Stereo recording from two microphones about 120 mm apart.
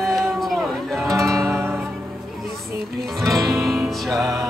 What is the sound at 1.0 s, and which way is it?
Music, 25° right (ahead or behind).